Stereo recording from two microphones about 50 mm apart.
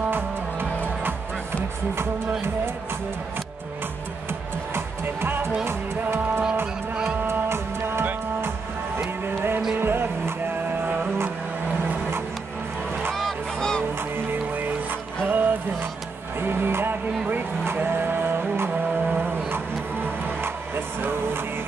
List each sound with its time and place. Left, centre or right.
0.1 s music: right
4.3 s music: right
9.2 s music: right
13.1 s honk: centre
13.9 s music: right